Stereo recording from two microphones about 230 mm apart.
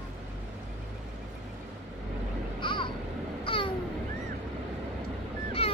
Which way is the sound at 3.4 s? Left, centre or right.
Left.